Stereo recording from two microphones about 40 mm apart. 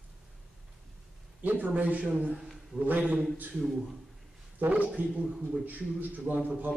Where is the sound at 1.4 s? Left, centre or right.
Right.